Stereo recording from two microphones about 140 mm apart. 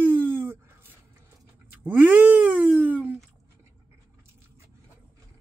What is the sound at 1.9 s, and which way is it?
Cat, 10° right (ahead or behind).